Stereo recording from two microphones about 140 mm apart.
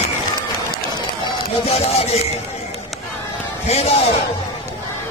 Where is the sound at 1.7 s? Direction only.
45° left (ahead or behind).